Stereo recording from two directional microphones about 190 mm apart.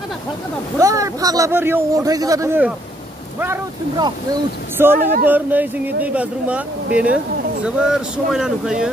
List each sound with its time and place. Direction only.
0.7 s a man's voice: 15° right (ahead or behind)
4.8 s a man's voice: 10° right (ahead or behind)